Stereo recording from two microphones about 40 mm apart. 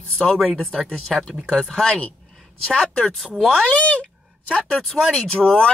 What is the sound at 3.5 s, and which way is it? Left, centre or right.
Speech, left.